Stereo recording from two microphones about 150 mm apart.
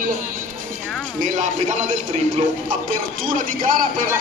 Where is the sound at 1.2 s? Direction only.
55° right (ahead or behind).